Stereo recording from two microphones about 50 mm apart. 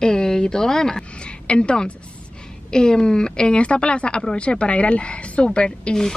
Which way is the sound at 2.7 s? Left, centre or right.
Centre.